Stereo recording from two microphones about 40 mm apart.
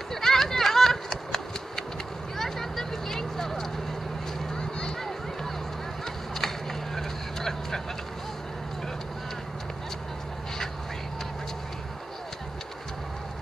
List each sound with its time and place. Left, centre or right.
0.1 s a sound: centre
2.3 s vehicle: centre
4.6 s music: centre
6.3 s vehicle: centre